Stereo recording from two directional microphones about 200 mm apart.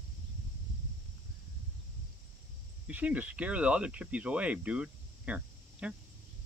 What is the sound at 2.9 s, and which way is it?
Speech, 5° right (ahead or behind).